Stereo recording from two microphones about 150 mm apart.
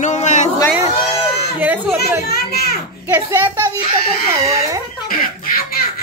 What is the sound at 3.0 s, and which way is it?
Speech, 15° right (ahead or behind).